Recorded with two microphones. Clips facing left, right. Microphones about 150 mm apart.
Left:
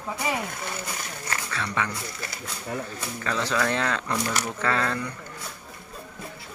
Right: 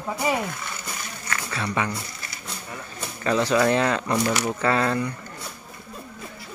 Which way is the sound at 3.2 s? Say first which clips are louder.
Right 6 dB; 15° right (ahead or behind).